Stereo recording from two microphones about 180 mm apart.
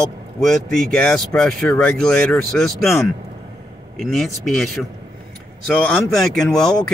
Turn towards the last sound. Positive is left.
turn(degrees=5)  # may be behind; listen again after turning